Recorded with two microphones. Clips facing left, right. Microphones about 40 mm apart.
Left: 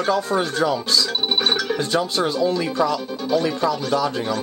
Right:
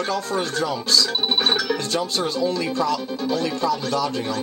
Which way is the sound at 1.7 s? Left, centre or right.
Centre.